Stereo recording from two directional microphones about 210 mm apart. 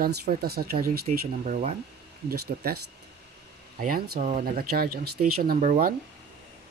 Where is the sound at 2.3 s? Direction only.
50° right (ahead or behind).